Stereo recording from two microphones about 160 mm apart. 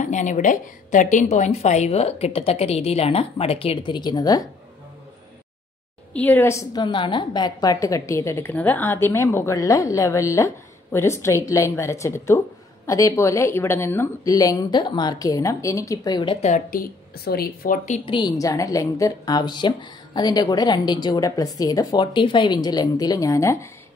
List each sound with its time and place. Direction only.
0.0 s a woman's voice: 50° left (ahead or behind); by 4.5 s 25° left (ahead or behind)
6.1 s a woman's voice: 10° left (ahead or behind); by 16.4 s 30° left (ahead or behind)
16.4 s a woman's voice: 50° left (ahead or behind)
17.2 s speech: 70° left (ahead or behind)
18.0 s a woman's voice: 30° left (ahead or behind)